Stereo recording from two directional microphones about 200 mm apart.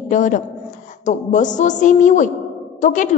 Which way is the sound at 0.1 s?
40° left (ahead or behind).